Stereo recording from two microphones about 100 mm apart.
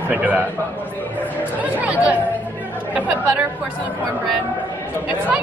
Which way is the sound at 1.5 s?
15° right (ahead or behind).